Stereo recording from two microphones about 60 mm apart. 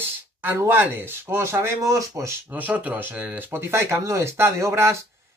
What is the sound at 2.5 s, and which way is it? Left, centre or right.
Speech, right.